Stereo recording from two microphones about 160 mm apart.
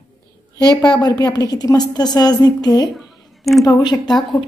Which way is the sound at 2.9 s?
Centre (ahead or behind).